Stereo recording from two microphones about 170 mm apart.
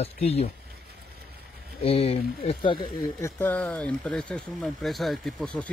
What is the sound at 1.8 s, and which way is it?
Speech, 35° left (ahead or behind).